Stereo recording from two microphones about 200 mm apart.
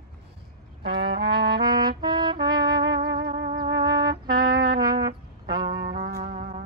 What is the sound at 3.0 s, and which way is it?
Music, 55° right (ahead or behind).